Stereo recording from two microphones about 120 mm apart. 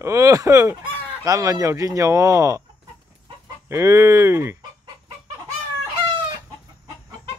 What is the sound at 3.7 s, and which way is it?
Speech, 25° right (ahead or behind).